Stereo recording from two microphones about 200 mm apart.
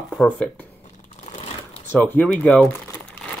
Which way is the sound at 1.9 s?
10° left (ahead or behind).